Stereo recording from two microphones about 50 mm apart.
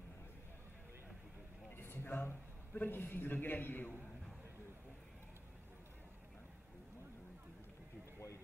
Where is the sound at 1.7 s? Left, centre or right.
Left.